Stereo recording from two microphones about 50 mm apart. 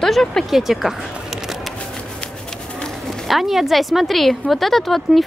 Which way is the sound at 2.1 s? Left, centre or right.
Centre.